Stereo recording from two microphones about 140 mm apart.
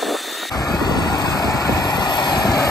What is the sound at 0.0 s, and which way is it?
Vehicle, centre (ahead or behind).